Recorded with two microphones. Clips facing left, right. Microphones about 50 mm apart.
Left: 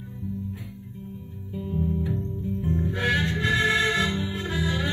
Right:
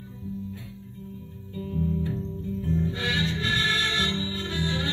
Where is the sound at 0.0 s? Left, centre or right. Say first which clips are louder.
Left 2 dB; left.